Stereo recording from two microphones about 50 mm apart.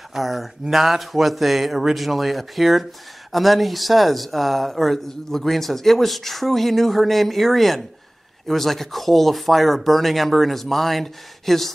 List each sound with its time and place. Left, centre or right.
0.1 s speech: centre